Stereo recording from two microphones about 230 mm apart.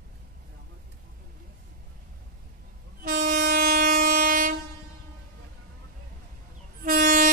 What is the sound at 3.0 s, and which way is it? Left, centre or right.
Train, right.